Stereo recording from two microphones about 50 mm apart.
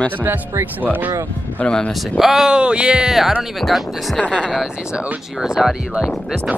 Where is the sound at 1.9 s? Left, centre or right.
Centre.